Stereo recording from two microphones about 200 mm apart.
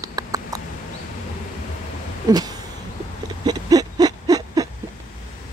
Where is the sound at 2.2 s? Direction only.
20° right (ahead or behind).